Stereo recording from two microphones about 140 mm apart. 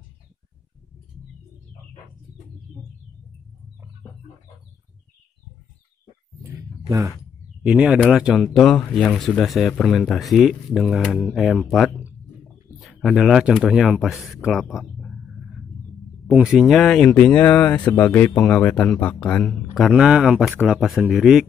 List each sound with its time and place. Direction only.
6.4 s a sound: 20° right (ahead or behind)
7.6 s speech: 5° right (ahead or behind)
12.7 s speech: centre (ahead or behind)
16.3 s speech: 5° right (ahead or behind)